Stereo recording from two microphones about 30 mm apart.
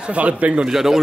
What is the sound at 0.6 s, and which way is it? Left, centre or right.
Speech, centre.